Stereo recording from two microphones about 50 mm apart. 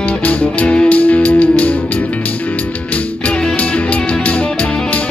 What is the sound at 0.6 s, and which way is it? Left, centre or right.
Music, left.